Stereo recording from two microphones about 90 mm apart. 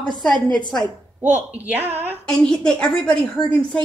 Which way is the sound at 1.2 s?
15° right (ahead or behind).